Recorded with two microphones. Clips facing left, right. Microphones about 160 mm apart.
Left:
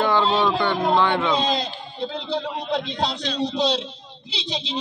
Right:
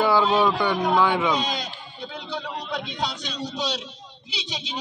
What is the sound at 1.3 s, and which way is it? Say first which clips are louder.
A man's voice: left 4 dB; 30° left (ahead or behind).